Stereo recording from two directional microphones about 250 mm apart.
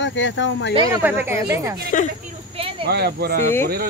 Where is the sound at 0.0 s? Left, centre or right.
Left.